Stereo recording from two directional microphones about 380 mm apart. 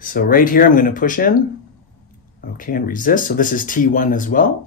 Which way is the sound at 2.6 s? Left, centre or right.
Left.